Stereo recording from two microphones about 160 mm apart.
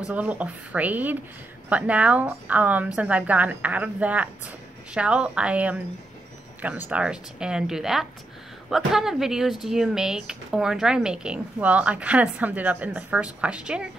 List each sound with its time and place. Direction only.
0.1 s a woman's voice: 10° right (ahead or behind)